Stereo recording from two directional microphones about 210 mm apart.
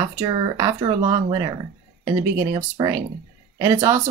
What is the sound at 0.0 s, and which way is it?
Speech, 15° right (ahead or behind).